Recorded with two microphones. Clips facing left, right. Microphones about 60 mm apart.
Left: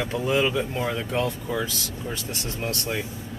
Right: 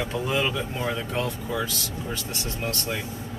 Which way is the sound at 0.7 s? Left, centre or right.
Centre.